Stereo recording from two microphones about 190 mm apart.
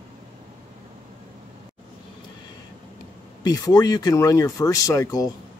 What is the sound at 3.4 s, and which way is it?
Speech, 20° left (ahead or behind).